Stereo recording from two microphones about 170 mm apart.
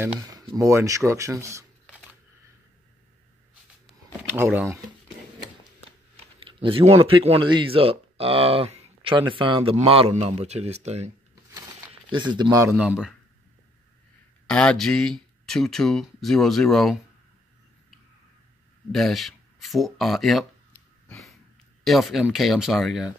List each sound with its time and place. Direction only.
0.6 s speech: 15° right (ahead or behind)
4.3 s speech: 10° right (ahead or behind)
6.4 s a man's voice: 30° right (ahead or behind)
11.9 s a sound: 30° right (ahead or behind)
12.4 s a man's voice: 20° right (ahead or behind)
12.7 s speech: 5° right (ahead or behind)
14.5 s speech: 5° left (ahead or behind)
18.9 s speech: centre (ahead or behind)
21.8 s speech: centre (ahead or behind)